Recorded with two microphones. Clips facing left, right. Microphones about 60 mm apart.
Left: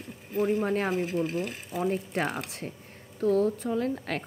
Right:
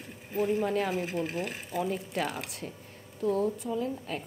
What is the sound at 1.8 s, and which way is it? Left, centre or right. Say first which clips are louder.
Speech: left 5 dB; left.